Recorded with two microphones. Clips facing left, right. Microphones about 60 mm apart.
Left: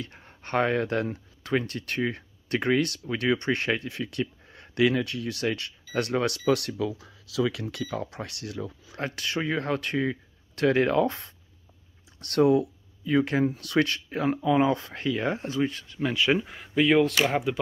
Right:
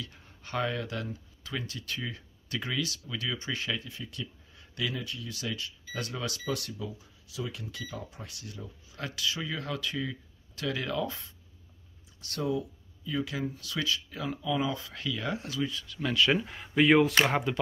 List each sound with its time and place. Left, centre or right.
0.0 s speech: left
8.9 s speech: left
16.0 s speech: centre
16.4 s speech: centre